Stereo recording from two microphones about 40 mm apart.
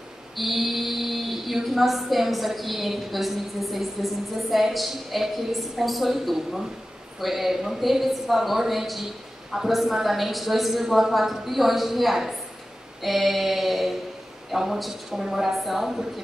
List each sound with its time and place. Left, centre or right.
0.4 s female singing: centre